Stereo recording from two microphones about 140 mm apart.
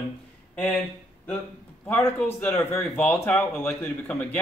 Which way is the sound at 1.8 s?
15° left (ahead or behind).